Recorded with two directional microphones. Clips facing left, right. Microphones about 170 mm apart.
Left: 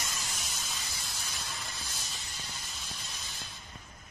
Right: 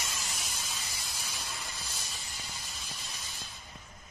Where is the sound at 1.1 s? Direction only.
10° right (ahead or behind).